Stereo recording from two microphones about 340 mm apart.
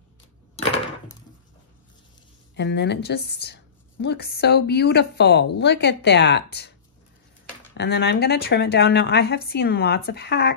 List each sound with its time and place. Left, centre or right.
0.6 s a sound: centre
2.5 s a woman's voice: left
7.7 s a woman's voice: left